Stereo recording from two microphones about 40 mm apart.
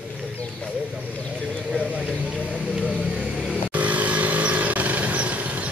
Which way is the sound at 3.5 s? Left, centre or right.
Right.